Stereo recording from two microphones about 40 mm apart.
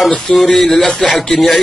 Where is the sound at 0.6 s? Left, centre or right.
Left.